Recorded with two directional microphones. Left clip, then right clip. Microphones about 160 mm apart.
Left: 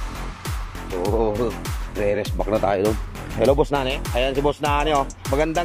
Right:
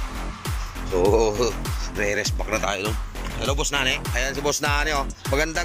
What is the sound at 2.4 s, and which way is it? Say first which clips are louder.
Speech: left 9 dB; 35° left (ahead or behind).